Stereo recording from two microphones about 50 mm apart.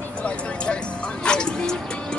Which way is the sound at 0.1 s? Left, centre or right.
Left.